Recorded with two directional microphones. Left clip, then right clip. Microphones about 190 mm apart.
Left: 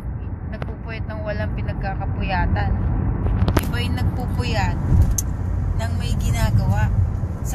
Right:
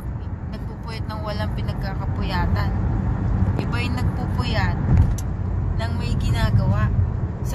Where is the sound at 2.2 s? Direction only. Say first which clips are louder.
Left 3 dB; 20° right (ahead or behind).